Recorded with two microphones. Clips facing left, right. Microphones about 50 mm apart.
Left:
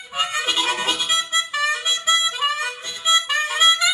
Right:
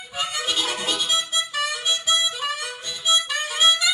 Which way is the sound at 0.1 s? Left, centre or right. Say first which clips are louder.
Left 4 dB; left.